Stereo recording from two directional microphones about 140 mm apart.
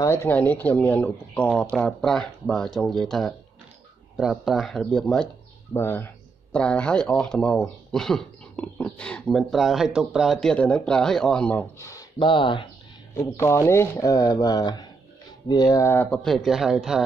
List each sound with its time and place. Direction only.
0.0 s speech: 15° left (ahead or behind)
5.7 s speech: 15° left (ahead or behind)
12.2 s speech: 35° left (ahead or behind)
13.1 s speech: 20° left (ahead or behind); by 17.0 s 5° right (ahead or behind)